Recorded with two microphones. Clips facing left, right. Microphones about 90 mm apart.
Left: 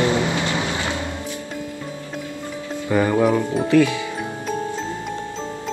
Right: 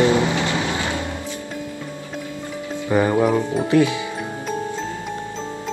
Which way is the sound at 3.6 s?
20° right (ahead or behind).